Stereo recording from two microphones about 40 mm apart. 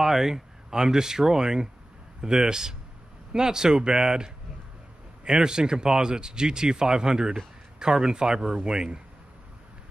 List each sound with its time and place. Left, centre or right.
0.0 s speech: centre